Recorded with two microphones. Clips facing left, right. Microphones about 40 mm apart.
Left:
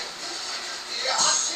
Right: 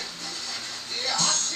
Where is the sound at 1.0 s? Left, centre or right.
Left.